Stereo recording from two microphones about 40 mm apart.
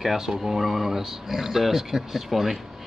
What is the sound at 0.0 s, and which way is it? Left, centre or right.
Speech, centre.